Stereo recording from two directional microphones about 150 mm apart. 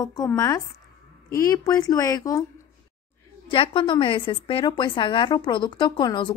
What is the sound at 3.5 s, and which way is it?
A woman's voice, 35° left (ahead or behind).